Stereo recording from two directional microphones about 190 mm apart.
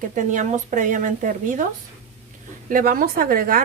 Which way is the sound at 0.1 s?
40° right (ahead or behind).